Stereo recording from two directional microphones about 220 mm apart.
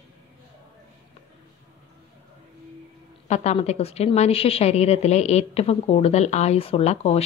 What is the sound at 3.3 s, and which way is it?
A woman's voice, 30° left (ahead or behind).